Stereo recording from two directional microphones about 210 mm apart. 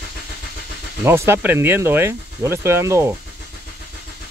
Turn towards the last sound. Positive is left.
turn(degrees=-15)  # may be behind; listen again after turning